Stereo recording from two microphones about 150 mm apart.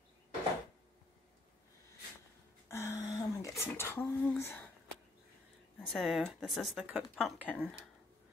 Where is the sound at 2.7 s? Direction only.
15° left (ahead or behind).